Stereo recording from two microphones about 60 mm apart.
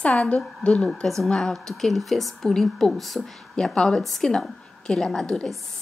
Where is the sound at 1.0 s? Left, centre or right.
Centre.